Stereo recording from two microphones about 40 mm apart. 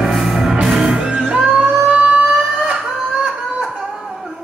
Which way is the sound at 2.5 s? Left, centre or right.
Centre.